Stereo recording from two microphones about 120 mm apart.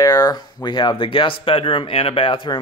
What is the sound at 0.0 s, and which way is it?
Speech, 30° left (ahead or behind).